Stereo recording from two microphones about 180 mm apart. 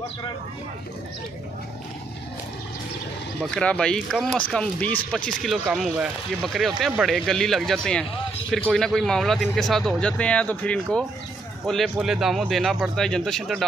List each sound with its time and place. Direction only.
3.5 s speech: 5° left (ahead or behind)